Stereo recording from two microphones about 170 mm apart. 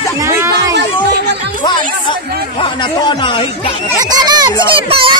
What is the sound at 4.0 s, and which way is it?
A child's voice, 25° right (ahead or behind).